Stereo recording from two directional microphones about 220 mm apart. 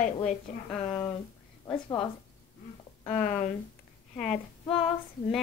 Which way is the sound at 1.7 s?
20° left (ahead or behind).